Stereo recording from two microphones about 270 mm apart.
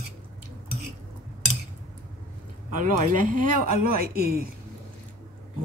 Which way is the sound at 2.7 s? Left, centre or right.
Right.